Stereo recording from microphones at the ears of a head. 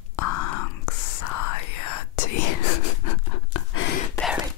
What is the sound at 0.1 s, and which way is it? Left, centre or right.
Whispering, left.